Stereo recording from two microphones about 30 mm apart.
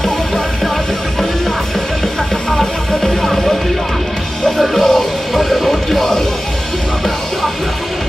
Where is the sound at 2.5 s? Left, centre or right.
Centre.